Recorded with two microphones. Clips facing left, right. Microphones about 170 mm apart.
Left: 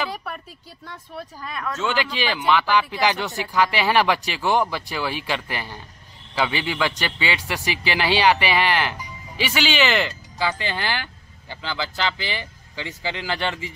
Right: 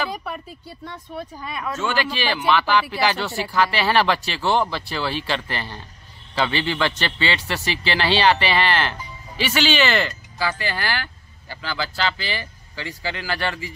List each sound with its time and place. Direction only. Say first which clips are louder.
0.1 s speech: right 2 dB; centre (ahead or behind)
1.8 s a man's voice: even; 15° left (ahead or behind)